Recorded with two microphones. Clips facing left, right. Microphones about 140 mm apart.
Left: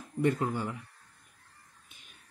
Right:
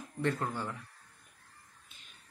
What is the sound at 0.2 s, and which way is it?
Speech, 10° left (ahead or behind).